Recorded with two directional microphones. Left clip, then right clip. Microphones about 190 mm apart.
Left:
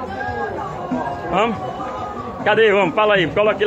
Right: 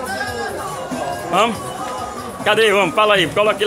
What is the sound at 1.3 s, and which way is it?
Speech, 20° right (ahead or behind).